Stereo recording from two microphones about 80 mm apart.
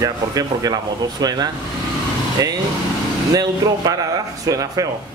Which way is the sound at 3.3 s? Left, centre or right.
Right.